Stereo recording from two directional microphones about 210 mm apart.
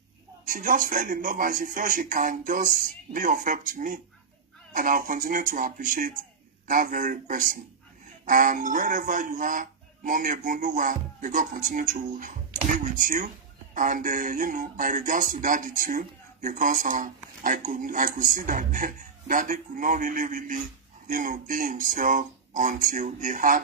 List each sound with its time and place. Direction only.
0.5 s speech: 40° right (ahead or behind)